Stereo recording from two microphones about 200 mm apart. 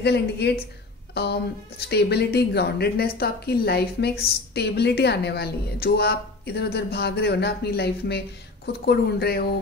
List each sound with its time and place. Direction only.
0.0 s a woman's voice: 55° left (ahead or behind)